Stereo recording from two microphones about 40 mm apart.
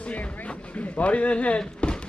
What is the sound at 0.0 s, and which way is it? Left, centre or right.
Music, left.